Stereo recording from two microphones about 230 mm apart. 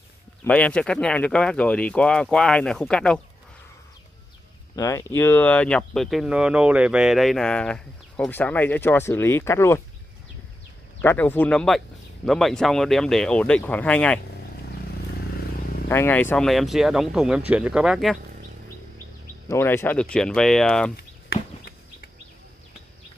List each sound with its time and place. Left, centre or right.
0.4 s speech: centre
4.7 s speech: centre
11.0 s speech: centre
15.9 s speech: centre
19.4 s speech: centre
20.9 s a sound: left